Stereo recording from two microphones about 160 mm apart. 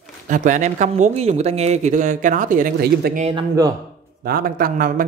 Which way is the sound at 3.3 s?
20° right (ahead or behind).